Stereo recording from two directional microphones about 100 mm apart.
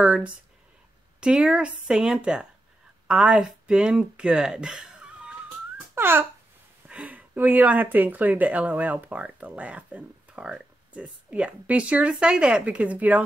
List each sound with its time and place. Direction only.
0.0 s speech: 10° right (ahead or behind)
5.9 s speech: 20° right (ahead or behind)